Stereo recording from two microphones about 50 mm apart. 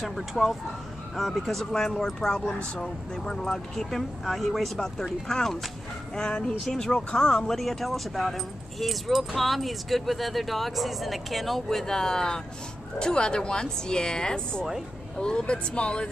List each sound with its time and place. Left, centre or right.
0.0 s speech: centre; by 16.1 s left